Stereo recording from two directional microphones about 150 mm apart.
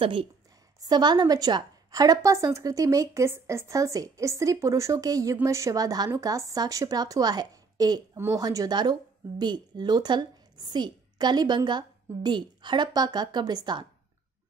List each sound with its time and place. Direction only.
0.0 s a woman's voice: 35° right (ahead or behind)